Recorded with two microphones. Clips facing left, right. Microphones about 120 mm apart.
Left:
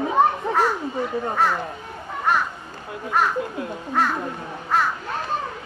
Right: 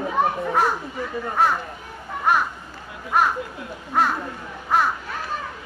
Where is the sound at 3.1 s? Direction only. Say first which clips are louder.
Right 1 dB; 15° right (ahead or behind).